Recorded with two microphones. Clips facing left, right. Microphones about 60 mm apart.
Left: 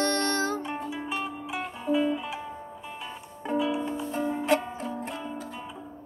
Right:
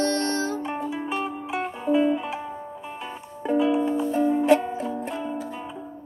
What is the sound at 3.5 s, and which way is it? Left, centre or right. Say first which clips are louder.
Music: right 6 dB; right.